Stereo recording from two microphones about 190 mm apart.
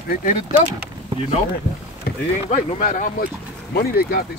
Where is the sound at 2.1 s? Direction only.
55° left (ahead or behind).